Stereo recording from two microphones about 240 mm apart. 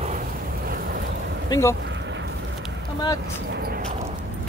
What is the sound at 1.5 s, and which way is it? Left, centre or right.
Speech, centre.